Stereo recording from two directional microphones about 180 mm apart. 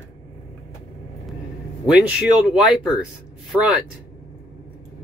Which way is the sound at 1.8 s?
10° right (ahead or behind).